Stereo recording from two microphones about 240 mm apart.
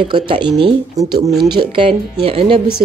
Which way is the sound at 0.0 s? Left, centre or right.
Centre.